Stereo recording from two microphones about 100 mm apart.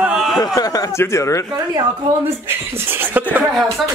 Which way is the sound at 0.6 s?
40° left (ahead or behind).